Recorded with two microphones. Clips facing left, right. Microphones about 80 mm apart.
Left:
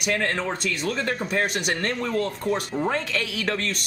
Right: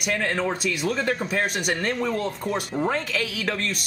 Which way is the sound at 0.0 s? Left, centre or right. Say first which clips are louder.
Even; centre.